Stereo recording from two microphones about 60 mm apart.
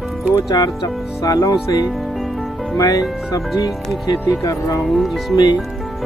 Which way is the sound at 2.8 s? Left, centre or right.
Left.